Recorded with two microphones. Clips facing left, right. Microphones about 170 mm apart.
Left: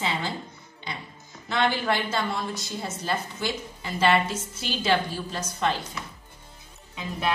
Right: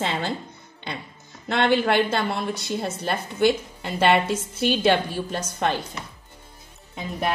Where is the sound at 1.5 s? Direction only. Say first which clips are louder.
Right 5 dB; 65° right (ahead or behind).